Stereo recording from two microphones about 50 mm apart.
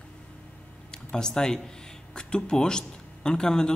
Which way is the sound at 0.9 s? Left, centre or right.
Centre.